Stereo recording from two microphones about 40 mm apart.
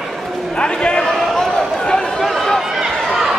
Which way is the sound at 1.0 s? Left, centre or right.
Centre.